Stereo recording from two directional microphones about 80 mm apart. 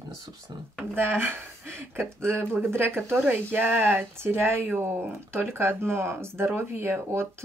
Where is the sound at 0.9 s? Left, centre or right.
Right.